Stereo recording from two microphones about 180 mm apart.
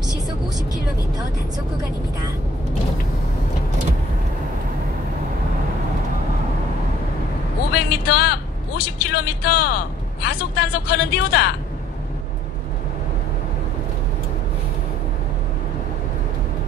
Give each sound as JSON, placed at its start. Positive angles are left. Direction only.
{"t": 7.7, "sound": "a woman's voice", "side_deg": 60}